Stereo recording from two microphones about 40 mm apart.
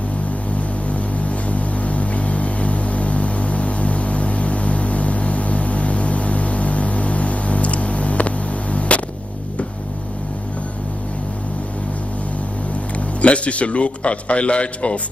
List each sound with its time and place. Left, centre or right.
1.5 s vehicle: left
8.7 s a sound: left
13.2 s a man's voice: left